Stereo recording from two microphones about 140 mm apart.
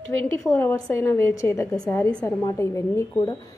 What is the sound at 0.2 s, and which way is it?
A woman's voice, 15° left (ahead or behind).